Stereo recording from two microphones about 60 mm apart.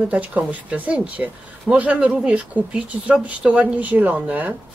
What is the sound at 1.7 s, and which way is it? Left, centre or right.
Speech, right.